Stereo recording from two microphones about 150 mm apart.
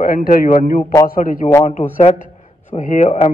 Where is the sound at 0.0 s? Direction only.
70° left (ahead or behind).